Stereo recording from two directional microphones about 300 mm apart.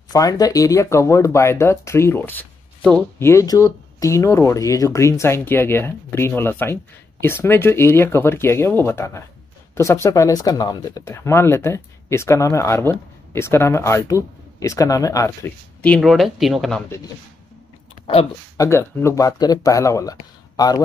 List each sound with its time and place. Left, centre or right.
0.1 s speech: centre
18.0 s speech: centre